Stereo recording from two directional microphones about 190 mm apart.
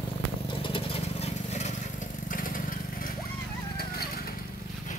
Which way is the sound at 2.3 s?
45° left (ahead or behind).